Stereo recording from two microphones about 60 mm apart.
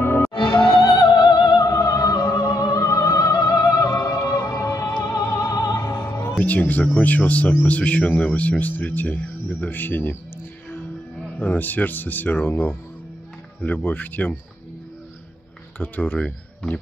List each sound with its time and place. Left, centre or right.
0.0 s music: left
1.6 s opera: left
5.5 s opera: left
5.9 s music: left
6.4 s speech: left
11.3 s speech: left
13.8 s speech: left
15.8 s speech: left
16.2 s speech: centre